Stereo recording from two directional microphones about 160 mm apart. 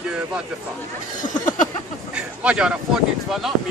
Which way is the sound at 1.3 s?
50° left (ahead or behind).